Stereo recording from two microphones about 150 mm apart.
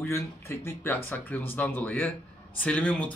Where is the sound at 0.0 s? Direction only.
20° left (ahead or behind).